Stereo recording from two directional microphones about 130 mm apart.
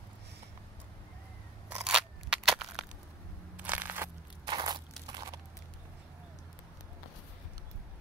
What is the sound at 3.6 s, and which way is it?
Crushing, 15° right (ahead or behind).